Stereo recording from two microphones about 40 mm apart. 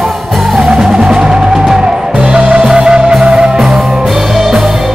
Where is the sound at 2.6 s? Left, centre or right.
Centre.